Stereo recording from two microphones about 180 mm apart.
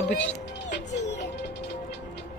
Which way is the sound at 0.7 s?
75° left (ahead or behind).